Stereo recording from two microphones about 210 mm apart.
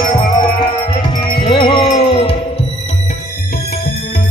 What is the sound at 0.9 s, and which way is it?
Music, 25° left (ahead or behind).